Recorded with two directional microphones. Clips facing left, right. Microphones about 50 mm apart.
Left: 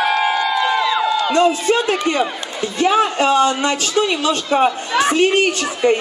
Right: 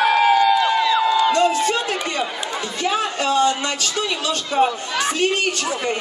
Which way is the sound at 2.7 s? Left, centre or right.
Left.